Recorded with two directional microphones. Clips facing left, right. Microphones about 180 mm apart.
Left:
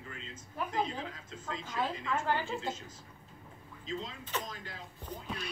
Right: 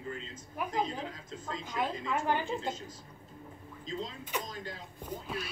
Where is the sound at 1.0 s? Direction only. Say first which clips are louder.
Right 2 dB; 35° right (ahead or behind).